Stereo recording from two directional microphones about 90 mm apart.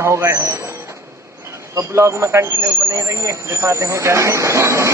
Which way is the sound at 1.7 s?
35° right (ahead or behind).